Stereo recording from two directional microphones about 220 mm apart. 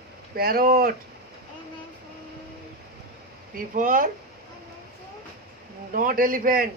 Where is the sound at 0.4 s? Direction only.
45° right (ahead or behind).